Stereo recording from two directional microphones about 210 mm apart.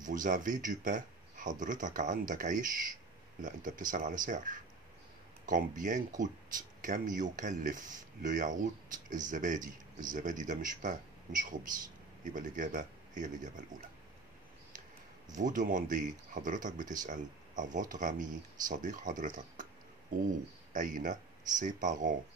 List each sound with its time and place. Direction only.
0.0 s speech: 40° right (ahead or behind)
15.3 s speech: 40° right (ahead or behind)